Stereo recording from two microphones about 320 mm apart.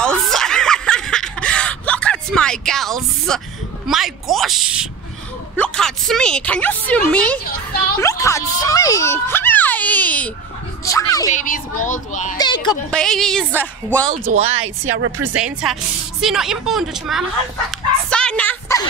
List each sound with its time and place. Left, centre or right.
0.0 s snicker: centre
3.8 s a sound: centre
5.6 s a woman's voice: centre
8.0 s music: centre
10.9 s a sound: centre
11.3 s a sound: left
12.9 s speech: centre
14.2 s speech: right
14.5 s speech: right
15.3 s speech: centre